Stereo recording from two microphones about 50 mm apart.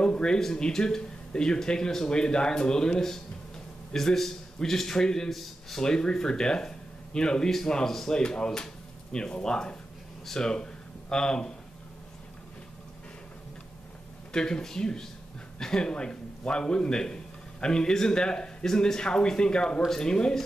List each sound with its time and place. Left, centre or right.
0.0 s a man's voice: centre
5.9 s a man's voice: centre
14.3 s a man's voice: centre